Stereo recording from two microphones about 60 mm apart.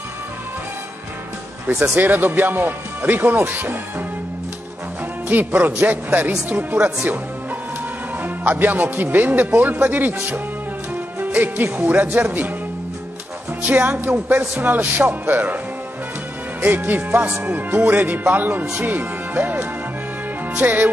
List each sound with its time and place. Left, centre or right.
2.0 s speech: right
5.3 s speech: right
8.2 s speech: right
11.1 s speech: right
13.6 s speech: right
16.6 s speech: right